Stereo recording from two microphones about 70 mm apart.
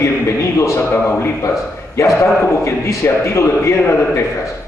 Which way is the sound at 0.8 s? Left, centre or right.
Left.